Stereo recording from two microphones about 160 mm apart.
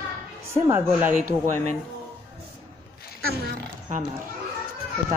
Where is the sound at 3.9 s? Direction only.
50° right (ahead or behind).